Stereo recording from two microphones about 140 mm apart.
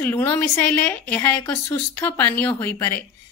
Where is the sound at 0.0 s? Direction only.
15° left (ahead or behind).